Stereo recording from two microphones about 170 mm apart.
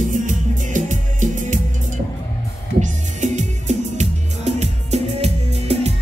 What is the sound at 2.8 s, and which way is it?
Music, 45° right (ahead or behind).